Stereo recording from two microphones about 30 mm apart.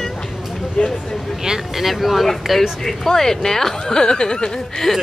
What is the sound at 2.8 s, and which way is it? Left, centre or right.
Speech, centre.